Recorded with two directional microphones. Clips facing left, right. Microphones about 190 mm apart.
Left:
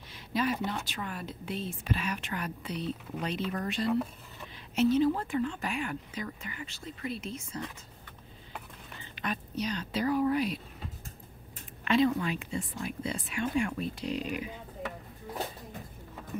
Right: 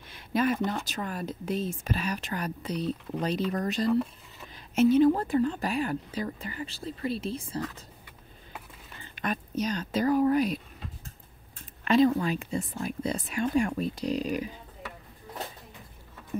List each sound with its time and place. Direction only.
0.1 s a sound: 50° right (ahead or behind)
0.7 s speech: 45° right (ahead or behind)
3.9 s speech: centre (ahead or behind)
4.7 s a woman's voice: 50° right (ahead or behind)
5.2 s speech: 40° right (ahead or behind)
9.1 s a woman's voice: 45° right (ahead or behind)
11.8 s speech: 40° right (ahead or behind)